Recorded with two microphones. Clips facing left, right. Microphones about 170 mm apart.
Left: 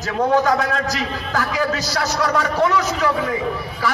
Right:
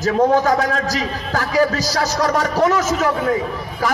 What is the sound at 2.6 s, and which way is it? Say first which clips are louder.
Speech: right 4 dB; 45° right (ahead or behind).